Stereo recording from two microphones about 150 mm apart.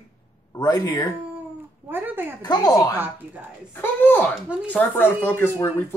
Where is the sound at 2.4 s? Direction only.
25° left (ahead or behind).